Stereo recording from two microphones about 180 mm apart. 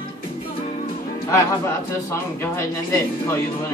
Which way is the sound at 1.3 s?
15° left (ahead or behind).